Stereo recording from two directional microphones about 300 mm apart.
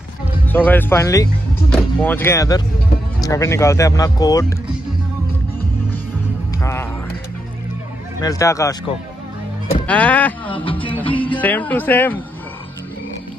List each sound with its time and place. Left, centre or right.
0.7 s speech: centre
6.6 s music: centre
8.2 s speech: centre
10.5 s music: centre
11.3 s speech: centre